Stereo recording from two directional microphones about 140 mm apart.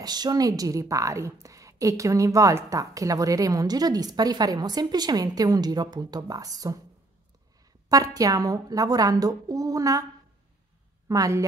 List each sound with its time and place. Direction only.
0.0 s a woman's voice: 30° right (ahead or behind)
7.9 s a woman's voice: 25° right (ahead or behind)
11.1 s a woman's voice: 25° right (ahead or behind)